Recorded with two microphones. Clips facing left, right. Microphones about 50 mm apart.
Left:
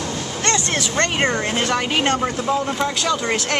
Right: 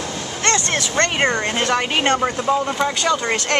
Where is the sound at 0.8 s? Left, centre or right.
Centre.